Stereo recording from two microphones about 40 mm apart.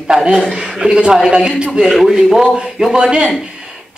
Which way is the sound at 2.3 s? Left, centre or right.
Centre.